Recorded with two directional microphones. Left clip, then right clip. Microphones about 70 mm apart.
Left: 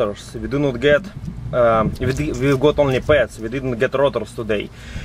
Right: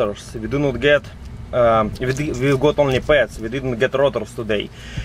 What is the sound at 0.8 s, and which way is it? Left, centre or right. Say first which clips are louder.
Speech: even; left.